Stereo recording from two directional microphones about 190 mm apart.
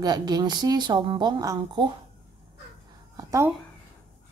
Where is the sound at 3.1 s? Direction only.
15° right (ahead or behind).